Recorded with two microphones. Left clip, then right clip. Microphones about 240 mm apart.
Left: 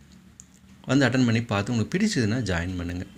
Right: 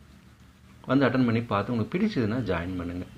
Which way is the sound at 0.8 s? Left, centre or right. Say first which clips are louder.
Left 1 dB; left.